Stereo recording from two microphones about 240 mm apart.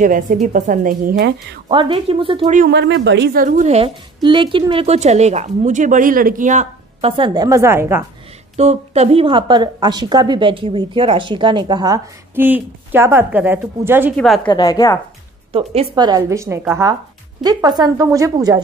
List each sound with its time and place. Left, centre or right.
0.0 s a woman's voice: right
1.7 s a woman's voice: right
2.7 s a woman's voice: right; by 8.0 s centre
8.5 s a woman's voice: right; by 14.1 s centre
14.1 s a woman's voice: centre
14.5 s a woman's voice: centre
15.5 s a woman's voice: right